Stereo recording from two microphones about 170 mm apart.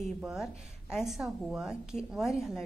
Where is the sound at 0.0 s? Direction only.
5° right (ahead or behind).